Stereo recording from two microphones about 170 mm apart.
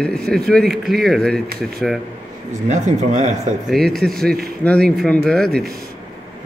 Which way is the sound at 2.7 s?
45° right (ahead or behind).